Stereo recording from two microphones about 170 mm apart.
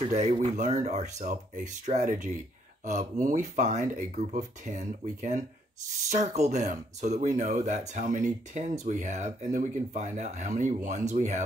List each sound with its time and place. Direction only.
0.0 s speech: 40° right (ahead or behind)